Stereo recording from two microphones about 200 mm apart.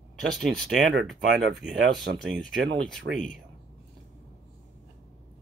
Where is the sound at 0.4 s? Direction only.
Centre (ahead or behind).